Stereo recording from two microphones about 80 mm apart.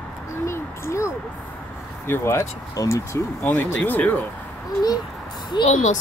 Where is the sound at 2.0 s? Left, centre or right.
Left.